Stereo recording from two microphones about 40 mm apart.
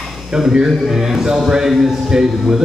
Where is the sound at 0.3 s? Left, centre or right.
Centre.